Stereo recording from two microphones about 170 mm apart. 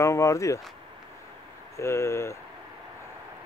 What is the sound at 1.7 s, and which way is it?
Speech, 15° left (ahead or behind).